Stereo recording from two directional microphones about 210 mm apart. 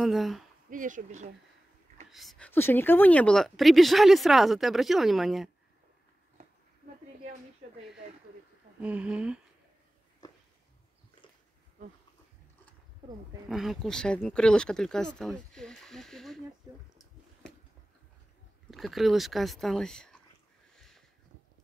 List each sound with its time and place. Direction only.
0.0 s speech: centre (ahead or behind)
0.7 s speech: 40° right (ahead or behind)
2.0 s speech: centre (ahead or behind)
8.8 s speech: 5° right (ahead or behind)
13.5 s speech: centre (ahead or behind)
17.4 s a sound: 5° left (ahead or behind)
18.7 s speech: centre (ahead or behind)